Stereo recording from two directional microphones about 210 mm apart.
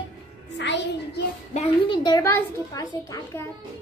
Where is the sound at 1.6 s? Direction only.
25° left (ahead or behind).